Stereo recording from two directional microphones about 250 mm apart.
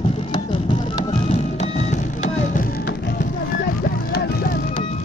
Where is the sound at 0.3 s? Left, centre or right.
Centre.